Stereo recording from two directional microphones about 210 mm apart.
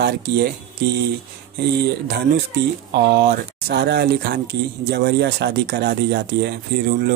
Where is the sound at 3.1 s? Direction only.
50° right (ahead or behind).